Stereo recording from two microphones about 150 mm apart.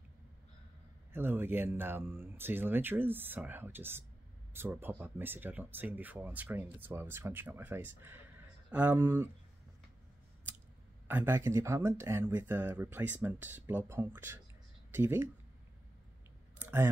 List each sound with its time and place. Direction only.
1.1 s speech: 15° right (ahead or behind)
11.1 s speech: 15° right (ahead or behind)
16.5 s clicking: 15° right (ahead or behind)